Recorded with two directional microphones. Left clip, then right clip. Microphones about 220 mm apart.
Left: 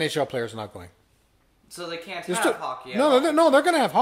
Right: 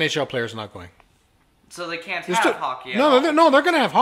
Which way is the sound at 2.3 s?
5° right (ahead or behind).